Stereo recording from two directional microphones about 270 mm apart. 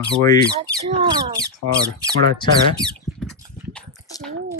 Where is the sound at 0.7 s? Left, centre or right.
Centre.